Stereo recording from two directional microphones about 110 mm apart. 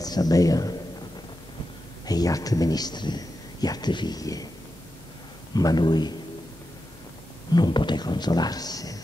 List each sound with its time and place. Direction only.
0.0 s speech: 35° left (ahead or behind)
2.0 s speech: 35° left (ahead or behind)
5.5 s speech: 35° left (ahead or behind)
7.5 s speech: 40° left (ahead or behind)